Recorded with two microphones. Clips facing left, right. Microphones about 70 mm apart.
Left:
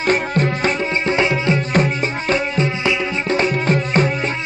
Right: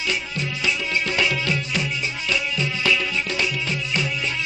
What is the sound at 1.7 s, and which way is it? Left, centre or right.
Music, left.